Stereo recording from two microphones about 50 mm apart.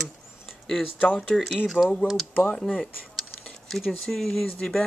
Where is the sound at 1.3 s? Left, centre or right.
Centre.